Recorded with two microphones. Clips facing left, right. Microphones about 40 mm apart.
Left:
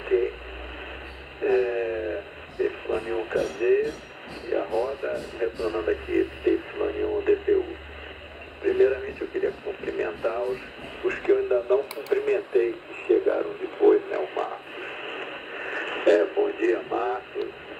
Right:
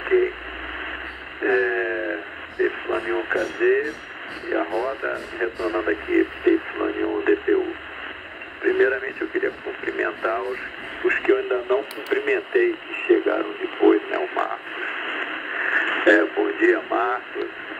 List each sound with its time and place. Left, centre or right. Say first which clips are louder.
0.0 s radio: right 4 dB; right
1.4 s a sound: right 2 dB; right
2.6 s radio: right 4 dB; right
4.5 s speech: right 2 dB; right
6.8 s speech: right 3 dB; right
7.2 s speech: right 2 dB; right
8.6 s speech: right 2 dB; right